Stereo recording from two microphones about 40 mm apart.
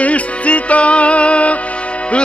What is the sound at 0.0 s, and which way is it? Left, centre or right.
Music, left.